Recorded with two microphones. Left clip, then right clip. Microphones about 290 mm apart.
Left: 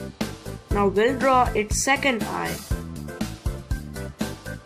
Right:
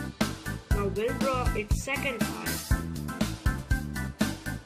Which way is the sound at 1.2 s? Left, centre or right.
Left.